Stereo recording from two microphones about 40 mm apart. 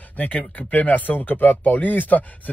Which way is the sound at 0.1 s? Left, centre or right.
Left.